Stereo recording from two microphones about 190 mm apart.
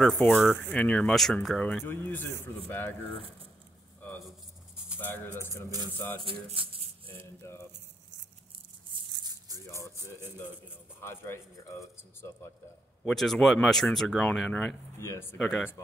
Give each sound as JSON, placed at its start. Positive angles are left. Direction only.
{"t": 0.0, "sound": "speech", "side_deg": 5}
{"t": 5.3, "sound": "speech", "side_deg": -15}
{"t": 6.2, "sound": "speech", "side_deg": -30}
{"t": 11.0, "sound": "speech", "side_deg": 15}
{"t": 13.0, "sound": "speech", "side_deg": 0}
{"t": 15.0, "sound": "speech", "side_deg": 15}
{"t": 15.3, "sound": "speech", "side_deg": 5}